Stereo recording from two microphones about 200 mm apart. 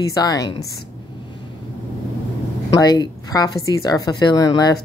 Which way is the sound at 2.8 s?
20° left (ahead or behind).